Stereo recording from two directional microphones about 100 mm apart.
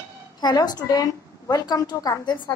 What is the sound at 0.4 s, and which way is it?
A woman's voice, 45° left (ahead or behind).